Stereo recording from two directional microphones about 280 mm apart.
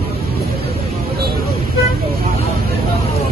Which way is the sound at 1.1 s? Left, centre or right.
Right.